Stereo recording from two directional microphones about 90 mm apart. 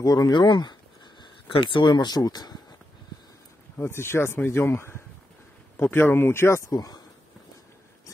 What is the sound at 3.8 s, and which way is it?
Speech, 30° left (ahead or behind).